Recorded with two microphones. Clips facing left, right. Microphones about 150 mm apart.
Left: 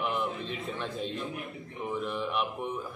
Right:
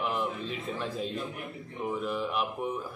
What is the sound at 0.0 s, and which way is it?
Speech, centre (ahead or behind).